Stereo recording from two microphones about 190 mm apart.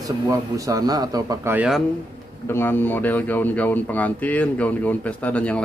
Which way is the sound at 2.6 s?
10° left (ahead or behind).